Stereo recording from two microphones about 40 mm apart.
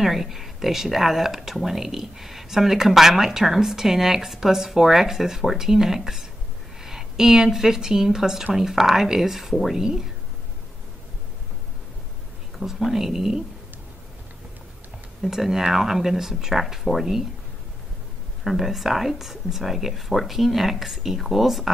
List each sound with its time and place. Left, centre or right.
0.0 s a woman's voice: centre
12.5 s speech: centre
15.2 s speech: centre
18.4 s speech: centre